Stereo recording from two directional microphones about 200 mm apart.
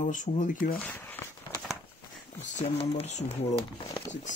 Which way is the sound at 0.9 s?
10° left (ahead or behind).